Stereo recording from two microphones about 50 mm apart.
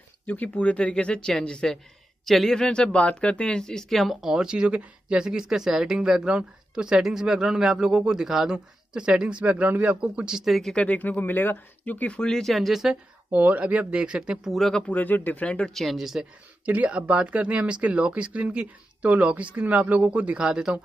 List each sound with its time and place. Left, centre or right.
0.3 s speech: left; by 1.7 s centre
2.2 s speech: centre
4.0 s speech: centre; by 9.4 s right
9.4 s a man's voice: right
10.2 s speech: centre
10.5 s speech: centre
10.8 s speech: left
11.8 s speech: left
12.2 s speech: centre
13.3 s speech: right; by 14.5 s centre
14.9 s speech: left
15.4 s speech: left
15.7 s speech: centre
16.6 s speech: right